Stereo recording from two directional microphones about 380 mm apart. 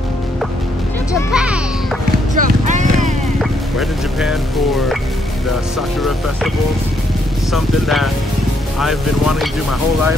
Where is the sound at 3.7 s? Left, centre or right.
Centre.